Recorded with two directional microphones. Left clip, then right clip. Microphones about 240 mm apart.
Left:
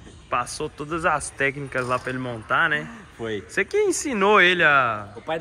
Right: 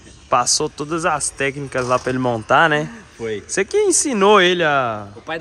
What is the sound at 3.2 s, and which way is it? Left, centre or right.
Speech, centre.